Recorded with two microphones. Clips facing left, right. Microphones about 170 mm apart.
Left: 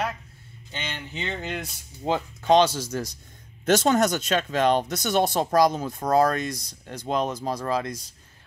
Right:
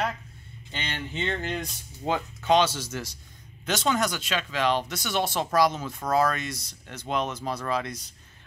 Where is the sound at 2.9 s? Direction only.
40° left (ahead or behind).